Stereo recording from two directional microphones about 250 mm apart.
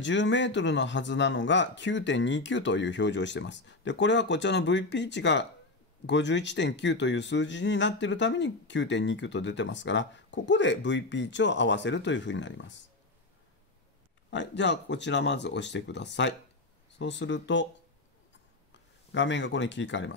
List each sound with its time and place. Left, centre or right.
0.0 s speech: left
14.3 s speech: left
18.7 s speech: left